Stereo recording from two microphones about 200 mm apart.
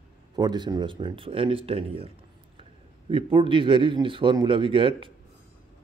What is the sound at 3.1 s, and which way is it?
Speech, 25° right (ahead or behind).